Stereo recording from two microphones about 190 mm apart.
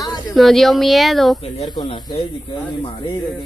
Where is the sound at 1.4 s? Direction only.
30° left (ahead or behind).